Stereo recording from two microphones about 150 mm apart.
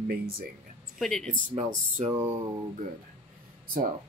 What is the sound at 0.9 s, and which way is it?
Speech, 5° left (ahead or behind).